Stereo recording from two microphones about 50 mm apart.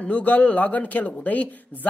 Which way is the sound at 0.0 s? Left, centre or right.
Left.